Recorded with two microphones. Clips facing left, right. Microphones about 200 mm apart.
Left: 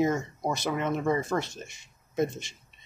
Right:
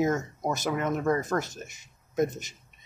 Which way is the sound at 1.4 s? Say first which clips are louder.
Even; 40° right (ahead or behind).